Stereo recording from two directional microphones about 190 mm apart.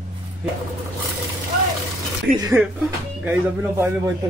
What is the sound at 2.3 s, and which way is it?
Speech, 50° right (ahead or behind).